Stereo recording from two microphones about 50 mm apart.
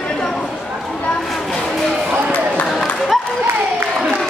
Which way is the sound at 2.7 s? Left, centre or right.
Centre.